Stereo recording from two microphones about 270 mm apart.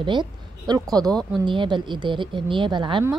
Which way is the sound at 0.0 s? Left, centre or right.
Centre.